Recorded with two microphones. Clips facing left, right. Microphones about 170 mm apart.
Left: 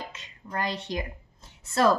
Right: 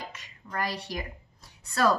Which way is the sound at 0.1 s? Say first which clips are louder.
Left 2 dB; 25° left (ahead or behind).